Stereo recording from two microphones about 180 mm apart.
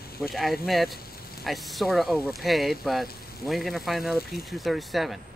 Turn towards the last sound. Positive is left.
turn(degrees=0)  # may be behind; listen again after turning